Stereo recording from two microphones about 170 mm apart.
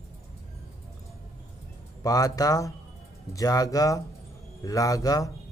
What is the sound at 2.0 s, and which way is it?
Speech, 20° left (ahead or behind).